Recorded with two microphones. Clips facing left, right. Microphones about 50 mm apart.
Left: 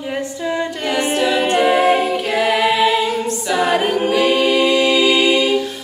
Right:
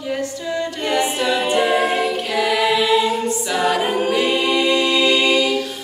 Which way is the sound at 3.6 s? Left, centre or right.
Left.